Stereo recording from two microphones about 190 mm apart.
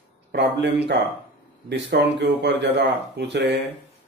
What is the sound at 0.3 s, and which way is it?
Speech, 65° right (ahead or behind).